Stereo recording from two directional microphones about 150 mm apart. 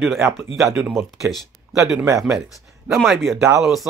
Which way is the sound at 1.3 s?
Centre (ahead or behind).